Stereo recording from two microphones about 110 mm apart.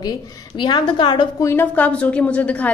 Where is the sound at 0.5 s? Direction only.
45° left (ahead or behind).